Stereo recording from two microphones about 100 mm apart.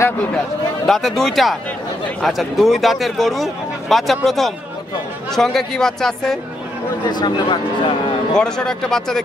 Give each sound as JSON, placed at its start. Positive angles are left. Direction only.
{"t": 0.8, "sound": "a man's voice", "side_deg": 0}
{"t": 7.1, "sound": "speech", "side_deg": 45}
{"t": 8.4, "sound": "a man's voice", "side_deg": 5}